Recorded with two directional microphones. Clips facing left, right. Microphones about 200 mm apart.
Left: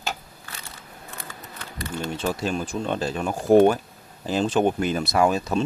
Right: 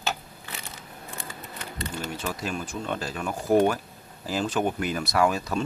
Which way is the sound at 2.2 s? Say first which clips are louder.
Left 8 dB; 30° left (ahead or behind).